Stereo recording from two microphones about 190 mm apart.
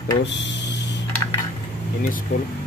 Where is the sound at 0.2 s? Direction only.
65° left (ahead or behind).